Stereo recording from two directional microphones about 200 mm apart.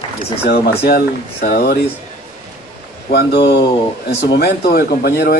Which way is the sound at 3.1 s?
55° left (ahead or behind).